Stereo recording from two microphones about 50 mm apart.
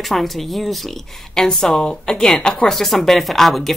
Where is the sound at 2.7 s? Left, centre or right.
Centre.